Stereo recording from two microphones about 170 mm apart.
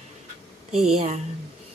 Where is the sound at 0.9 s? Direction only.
40° right (ahead or behind).